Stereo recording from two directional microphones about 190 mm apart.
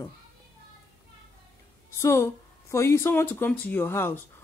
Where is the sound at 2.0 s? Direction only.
15° left (ahead or behind).